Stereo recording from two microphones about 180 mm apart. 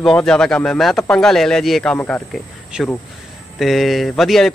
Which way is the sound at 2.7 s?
5° right (ahead or behind).